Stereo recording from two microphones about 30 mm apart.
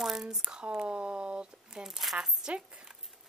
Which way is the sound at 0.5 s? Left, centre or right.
Right.